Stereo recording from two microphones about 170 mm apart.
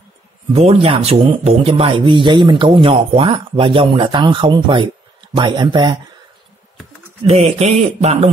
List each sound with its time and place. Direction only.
0.5 s a man's voice: 35° right (ahead or behind)
7.2 s a man's voice: 40° right (ahead or behind)